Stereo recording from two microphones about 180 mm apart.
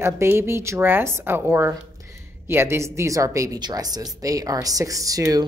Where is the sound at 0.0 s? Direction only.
15° right (ahead or behind).